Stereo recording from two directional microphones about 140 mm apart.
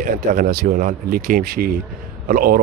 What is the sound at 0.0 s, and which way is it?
Speech, 70° right (ahead or behind).